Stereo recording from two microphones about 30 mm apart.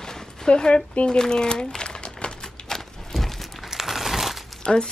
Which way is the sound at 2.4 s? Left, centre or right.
Centre.